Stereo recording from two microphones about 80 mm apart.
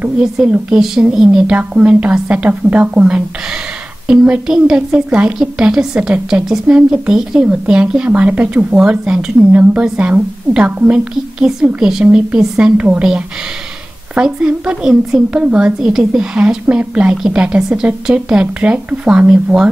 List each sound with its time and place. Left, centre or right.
0.2 s speech: centre
1.6 s speech: centre